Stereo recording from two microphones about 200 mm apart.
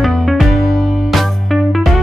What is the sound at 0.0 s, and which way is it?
Music, centre (ahead or behind).